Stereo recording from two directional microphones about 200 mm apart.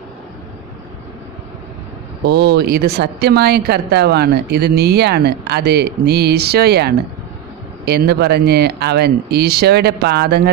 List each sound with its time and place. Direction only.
2.2 s a woman's voice: 55° right (ahead or behind)